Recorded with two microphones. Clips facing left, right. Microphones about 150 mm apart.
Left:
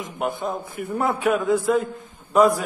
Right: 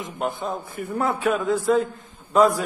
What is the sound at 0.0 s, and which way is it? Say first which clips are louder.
A man's voice: left 1 dB; 10° left (ahead or behind).